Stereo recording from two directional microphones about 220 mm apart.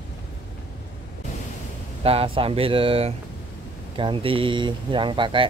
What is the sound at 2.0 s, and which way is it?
Speech, 25° right (ahead or behind).